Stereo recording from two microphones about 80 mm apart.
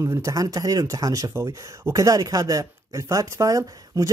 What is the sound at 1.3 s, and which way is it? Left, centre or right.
Speech, right.